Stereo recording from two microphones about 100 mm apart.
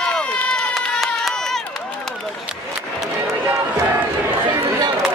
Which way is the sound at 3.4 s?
20° right (ahead or behind).